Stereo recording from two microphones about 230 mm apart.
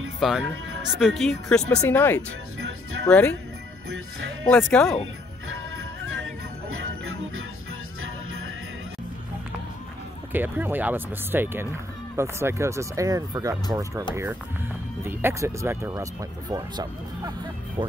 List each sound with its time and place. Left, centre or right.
0.2 s speech: centre
4.5 s speech: centre
10.3 s speech: centre
15.0 s speech: centre